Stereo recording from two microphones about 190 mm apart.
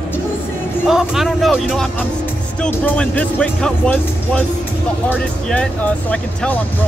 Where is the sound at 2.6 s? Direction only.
5° left (ahead or behind).